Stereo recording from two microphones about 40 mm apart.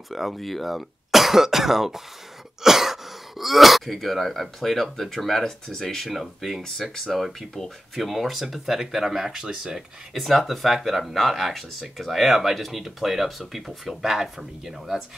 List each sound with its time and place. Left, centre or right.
0.1 s speech: centre
9.3 s speech: centre
10.1 s speech: centre